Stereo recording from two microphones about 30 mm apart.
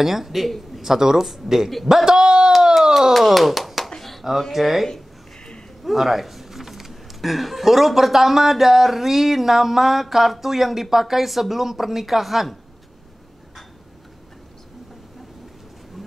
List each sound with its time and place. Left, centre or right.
0.0 s speech: centre
0.8 s speech: centre
3.1 s speech: centre
5.9 s speech: centre